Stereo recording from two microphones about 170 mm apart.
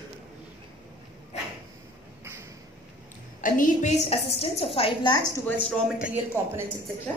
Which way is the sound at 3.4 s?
50° left (ahead or behind).